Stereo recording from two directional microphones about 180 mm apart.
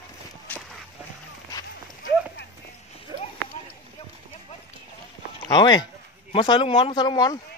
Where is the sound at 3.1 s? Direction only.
30° right (ahead or behind).